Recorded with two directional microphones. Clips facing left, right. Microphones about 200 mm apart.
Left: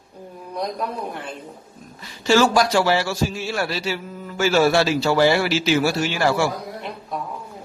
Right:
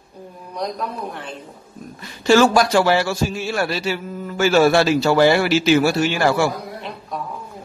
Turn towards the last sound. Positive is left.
turn(degrees=-55)  # may be behind; listen again after turning